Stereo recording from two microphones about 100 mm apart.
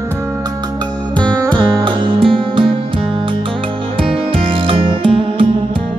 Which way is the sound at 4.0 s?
65° right (ahead or behind).